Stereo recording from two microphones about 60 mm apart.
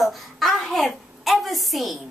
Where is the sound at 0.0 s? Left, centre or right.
Centre.